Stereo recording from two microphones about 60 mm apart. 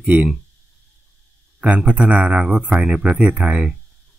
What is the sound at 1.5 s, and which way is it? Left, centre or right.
Speech, right.